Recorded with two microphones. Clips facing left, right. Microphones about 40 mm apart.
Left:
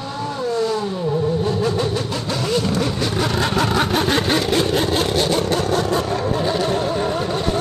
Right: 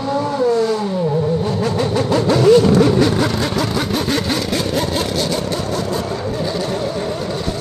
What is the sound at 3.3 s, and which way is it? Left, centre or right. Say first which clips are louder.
Vehicle: left 1 dB; left.